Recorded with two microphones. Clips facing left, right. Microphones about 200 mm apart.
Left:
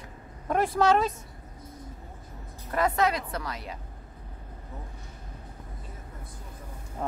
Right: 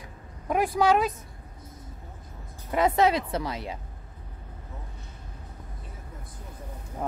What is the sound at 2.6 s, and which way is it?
A woman's voice, 20° right (ahead or behind).